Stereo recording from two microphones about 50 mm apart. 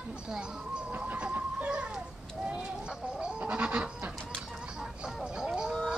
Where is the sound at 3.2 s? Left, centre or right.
Right.